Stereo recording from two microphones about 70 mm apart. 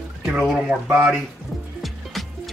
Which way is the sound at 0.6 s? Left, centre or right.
Right.